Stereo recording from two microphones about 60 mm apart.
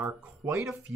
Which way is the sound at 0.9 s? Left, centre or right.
Right.